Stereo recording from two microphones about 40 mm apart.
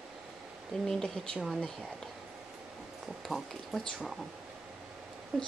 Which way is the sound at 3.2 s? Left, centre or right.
Centre.